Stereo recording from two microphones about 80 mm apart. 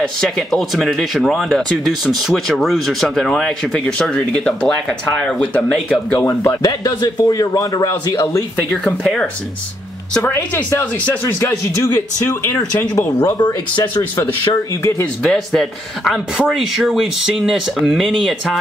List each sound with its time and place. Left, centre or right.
0.0 s speech: centre
6.6 s speech: left
9.0 s speech: centre
11.2 s a man's voice: left
12.9 s speech: left
15.2 s speech: centre